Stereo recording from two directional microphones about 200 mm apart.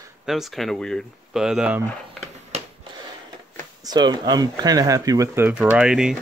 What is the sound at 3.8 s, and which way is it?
Speech, 20° right (ahead or behind).